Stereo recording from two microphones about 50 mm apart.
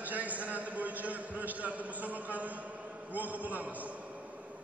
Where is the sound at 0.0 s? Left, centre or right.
Right.